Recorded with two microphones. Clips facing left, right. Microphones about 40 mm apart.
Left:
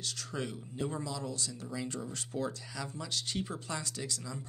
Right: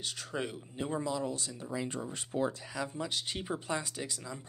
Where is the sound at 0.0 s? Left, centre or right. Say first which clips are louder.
Right 1 dB; centre.